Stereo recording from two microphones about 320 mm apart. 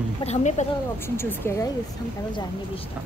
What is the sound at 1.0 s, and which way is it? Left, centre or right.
Speech, centre.